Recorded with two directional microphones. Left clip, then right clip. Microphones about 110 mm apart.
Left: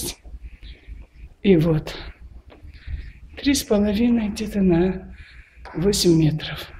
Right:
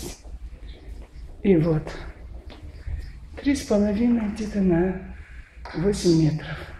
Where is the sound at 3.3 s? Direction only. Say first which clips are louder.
Left 3 dB; 25° left (ahead or behind).